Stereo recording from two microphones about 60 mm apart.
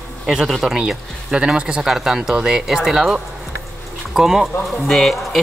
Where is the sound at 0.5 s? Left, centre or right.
Centre.